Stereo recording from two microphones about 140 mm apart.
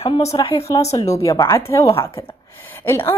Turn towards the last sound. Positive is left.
turn(degrees=15)  # may be behind; listen again after turning